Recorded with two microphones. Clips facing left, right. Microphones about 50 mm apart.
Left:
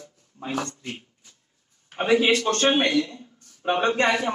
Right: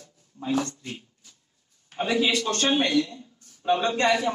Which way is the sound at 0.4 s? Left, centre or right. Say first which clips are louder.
Right 3 dB; left.